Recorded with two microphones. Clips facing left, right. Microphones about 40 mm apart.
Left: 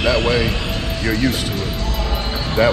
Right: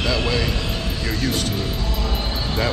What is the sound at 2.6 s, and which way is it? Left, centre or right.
Speech, centre.